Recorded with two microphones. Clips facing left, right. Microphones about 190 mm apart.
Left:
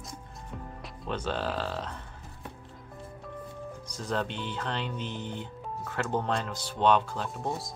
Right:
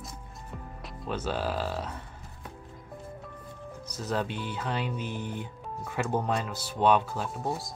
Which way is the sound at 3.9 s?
5° right (ahead or behind).